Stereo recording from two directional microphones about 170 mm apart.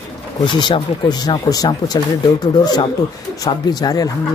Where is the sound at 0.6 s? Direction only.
25° left (ahead or behind).